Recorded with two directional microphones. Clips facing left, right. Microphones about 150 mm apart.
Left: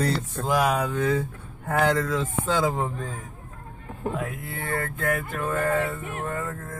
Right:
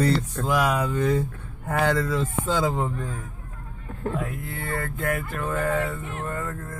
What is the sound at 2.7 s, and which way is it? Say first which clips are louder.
Speech: right 1 dB; 15° left (ahead or behind).